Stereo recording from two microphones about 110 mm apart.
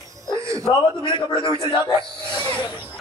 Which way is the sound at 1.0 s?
45° left (ahead or behind).